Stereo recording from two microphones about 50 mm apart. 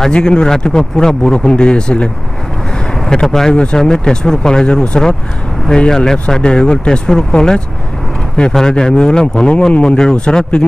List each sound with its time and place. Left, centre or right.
0.0 s speech: centre